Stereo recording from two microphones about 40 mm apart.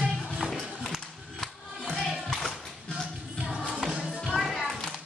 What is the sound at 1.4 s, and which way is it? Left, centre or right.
Music, centre.